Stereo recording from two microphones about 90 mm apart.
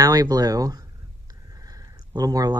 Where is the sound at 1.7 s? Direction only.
45° right (ahead or behind).